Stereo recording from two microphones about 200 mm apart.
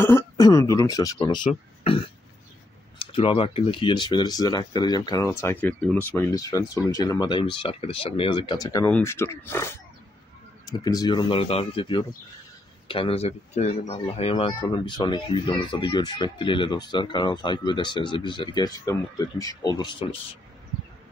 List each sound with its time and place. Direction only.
0.0 s speech: 15° left (ahead or behind)
3.1 s speech: 25° left (ahead or behind)